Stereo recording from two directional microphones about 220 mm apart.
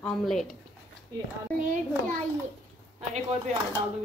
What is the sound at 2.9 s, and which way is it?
Speech, 30° right (ahead or behind).